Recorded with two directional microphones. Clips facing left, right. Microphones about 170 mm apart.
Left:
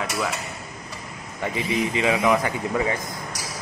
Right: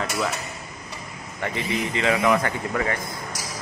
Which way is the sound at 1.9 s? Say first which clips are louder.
Right 1 dB; 15° left (ahead or behind).